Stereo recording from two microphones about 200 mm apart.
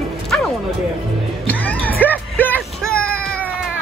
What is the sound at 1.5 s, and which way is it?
Music, 10° left (ahead or behind).